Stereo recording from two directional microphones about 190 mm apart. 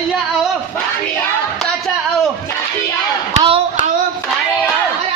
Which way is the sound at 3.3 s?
30° right (ahead or behind).